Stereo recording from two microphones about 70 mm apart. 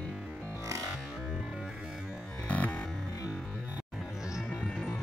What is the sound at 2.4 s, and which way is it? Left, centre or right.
Music, left.